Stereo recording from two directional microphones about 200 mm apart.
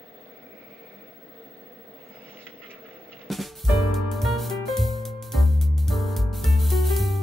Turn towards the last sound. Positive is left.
turn(degrees=0)  # may be behind; listen again after turning